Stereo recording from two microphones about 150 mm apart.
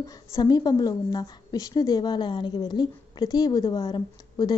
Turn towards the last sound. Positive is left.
turn(degrees=30)  # may be behind; listen again after turning